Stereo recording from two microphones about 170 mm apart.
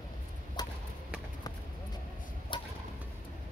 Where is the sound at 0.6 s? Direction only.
25° left (ahead or behind).